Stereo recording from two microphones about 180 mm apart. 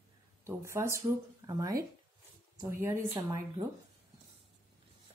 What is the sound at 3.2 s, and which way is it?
Speech, 20° right (ahead or behind).